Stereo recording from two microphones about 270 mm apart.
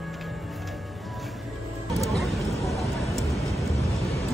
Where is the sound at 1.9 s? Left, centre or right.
Centre.